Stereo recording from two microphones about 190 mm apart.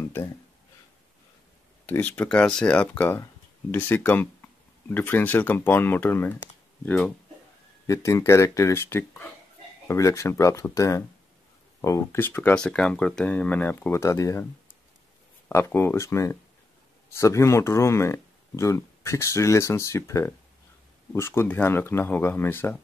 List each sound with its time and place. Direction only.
1.9 s speech: 10° left (ahead or behind)
15.4 s speech: 10° left (ahead or behind)